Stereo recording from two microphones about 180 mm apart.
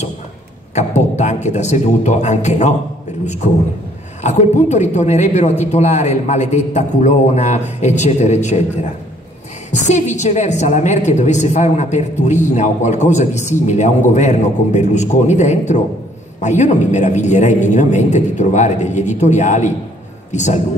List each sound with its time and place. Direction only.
0.7 s a woman's voice: 40° left (ahead or behind)
4.2 s a woman's voice: 40° left (ahead or behind)
9.7 s a woman's voice: 40° left (ahead or behind)